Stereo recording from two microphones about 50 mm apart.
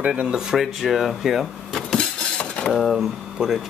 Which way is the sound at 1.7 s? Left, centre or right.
Centre.